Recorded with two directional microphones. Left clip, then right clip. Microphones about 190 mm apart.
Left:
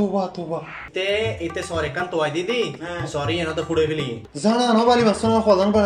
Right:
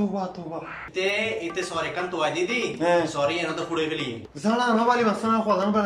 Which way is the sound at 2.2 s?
45° left (ahead or behind).